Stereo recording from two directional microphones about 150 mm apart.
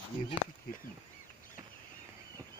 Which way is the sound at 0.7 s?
75° left (ahead or behind).